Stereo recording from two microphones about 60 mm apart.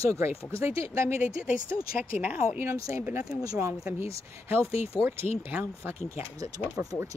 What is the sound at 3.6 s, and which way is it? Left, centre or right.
Speech, right.